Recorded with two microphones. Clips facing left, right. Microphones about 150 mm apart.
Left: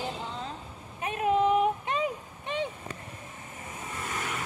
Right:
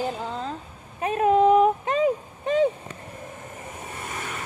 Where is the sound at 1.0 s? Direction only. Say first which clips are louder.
Right 6 dB; 40° right (ahead or behind).